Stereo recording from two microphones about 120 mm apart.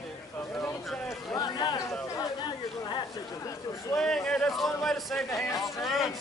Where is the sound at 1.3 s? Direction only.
40° left (ahead or behind).